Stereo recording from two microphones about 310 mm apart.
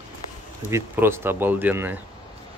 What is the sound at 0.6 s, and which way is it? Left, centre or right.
Speech, centre.